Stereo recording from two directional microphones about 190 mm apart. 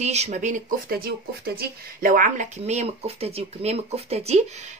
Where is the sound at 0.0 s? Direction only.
35° right (ahead or behind).